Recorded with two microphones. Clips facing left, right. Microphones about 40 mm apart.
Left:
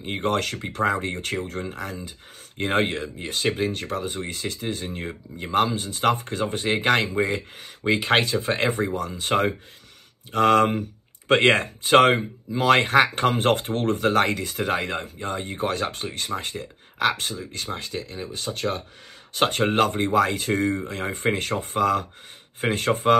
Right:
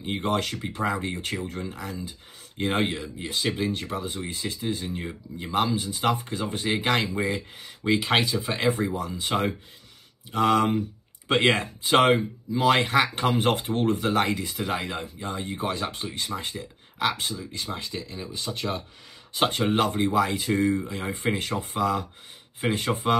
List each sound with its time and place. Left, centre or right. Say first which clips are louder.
0.2 s speech: left 3 dB; left
8.9 s speech: left 2 dB; left
9.3 s speech: left 4 dB; left
10.3 s speech: left 3 dB; left
16.1 s speech: left 2 dB; left